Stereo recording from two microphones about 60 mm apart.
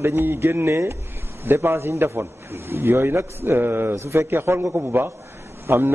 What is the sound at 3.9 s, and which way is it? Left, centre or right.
A man's voice, right.